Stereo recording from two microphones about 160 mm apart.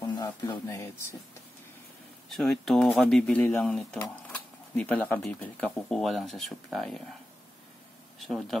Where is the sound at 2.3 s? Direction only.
Centre (ahead or behind).